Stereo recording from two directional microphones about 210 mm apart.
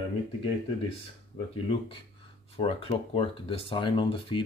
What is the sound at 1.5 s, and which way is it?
Speech, 25° left (ahead or behind).